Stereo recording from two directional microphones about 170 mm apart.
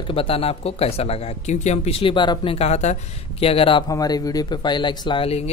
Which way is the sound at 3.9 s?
20° left (ahead or behind).